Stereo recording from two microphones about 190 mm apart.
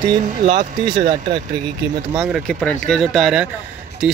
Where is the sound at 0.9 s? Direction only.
25° right (ahead or behind).